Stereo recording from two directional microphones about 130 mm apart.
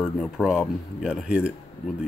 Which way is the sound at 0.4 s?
10° left (ahead or behind).